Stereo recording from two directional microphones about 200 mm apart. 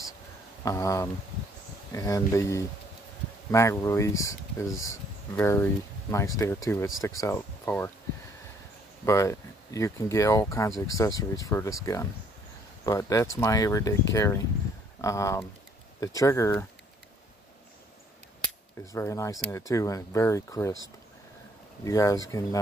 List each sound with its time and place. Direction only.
0.7 s speech: 15° left (ahead or behind)
9.0 s speech: 15° left (ahead or behind)
18.9 s speech: 15° left (ahead or behind)
21.8 s speech: 15° left (ahead or behind)